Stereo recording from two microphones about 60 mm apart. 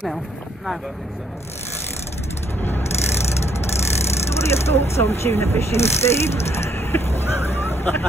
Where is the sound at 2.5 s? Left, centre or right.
Left.